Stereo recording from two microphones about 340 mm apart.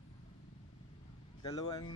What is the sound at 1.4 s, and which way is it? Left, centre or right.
Speech, centre.